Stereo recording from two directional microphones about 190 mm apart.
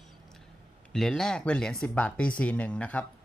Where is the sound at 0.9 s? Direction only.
Centre (ahead or behind).